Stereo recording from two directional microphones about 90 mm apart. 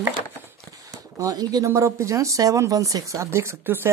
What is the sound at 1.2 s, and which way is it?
Speech, 40° right (ahead or behind).